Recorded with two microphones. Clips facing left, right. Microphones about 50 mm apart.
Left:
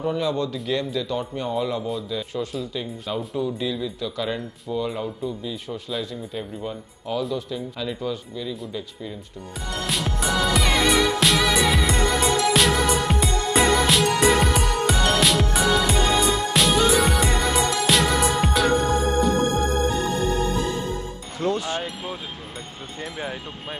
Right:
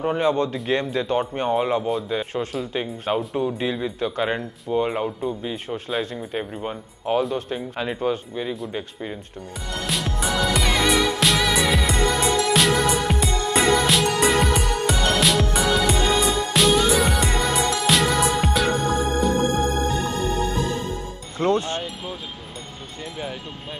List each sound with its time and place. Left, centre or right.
0.0 s a man's voice: right
9.8 s music: centre
21.4 s music: right
22.9 s speech: centre